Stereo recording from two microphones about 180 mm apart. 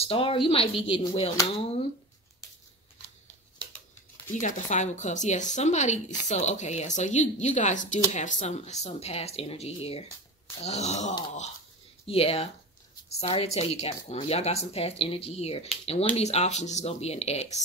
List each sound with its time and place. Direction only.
0.0 s speech: 30° left (ahead or behind)
4.3 s speech: 45° left (ahead or behind)